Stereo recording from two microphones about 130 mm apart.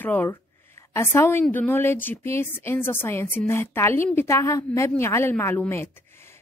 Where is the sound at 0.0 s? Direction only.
15° left (ahead or behind).